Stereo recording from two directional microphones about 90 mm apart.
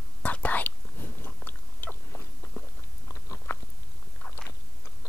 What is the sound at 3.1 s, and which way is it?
Biting, 35° left (ahead or behind).